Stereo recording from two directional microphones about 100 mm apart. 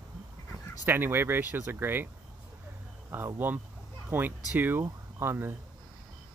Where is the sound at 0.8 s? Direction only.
20° right (ahead or behind).